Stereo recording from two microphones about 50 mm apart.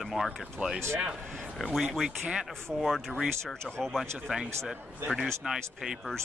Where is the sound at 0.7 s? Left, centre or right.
Right.